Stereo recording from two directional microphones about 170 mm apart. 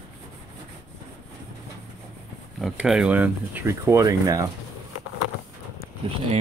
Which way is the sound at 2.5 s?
Centre (ahead or behind).